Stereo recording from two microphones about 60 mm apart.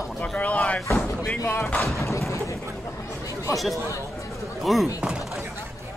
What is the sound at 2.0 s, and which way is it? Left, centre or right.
Speech, left.